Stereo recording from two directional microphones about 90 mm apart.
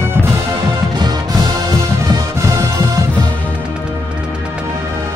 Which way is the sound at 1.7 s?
40° right (ahead or behind).